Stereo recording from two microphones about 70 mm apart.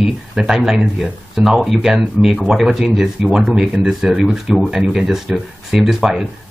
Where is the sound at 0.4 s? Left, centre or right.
Centre.